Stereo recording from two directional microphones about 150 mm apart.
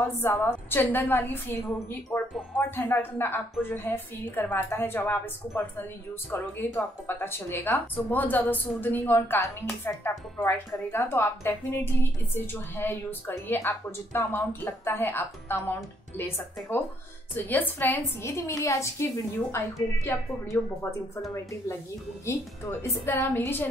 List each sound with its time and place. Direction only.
0.0 s speech: 15° left (ahead or behind)
20.1 s speech: 15° left (ahead or behind)
22.2 s speech: 15° left (ahead or behind)